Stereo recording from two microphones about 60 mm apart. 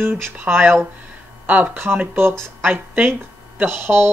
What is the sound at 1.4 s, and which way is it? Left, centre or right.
Speech, right.